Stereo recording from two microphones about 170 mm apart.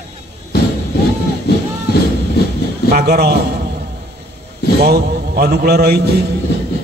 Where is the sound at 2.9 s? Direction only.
70° right (ahead or behind).